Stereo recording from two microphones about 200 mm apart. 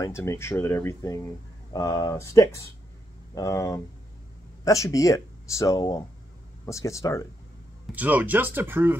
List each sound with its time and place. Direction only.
0.0 s speech: 15° left (ahead or behind)
7.9 s speech: 10° right (ahead or behind)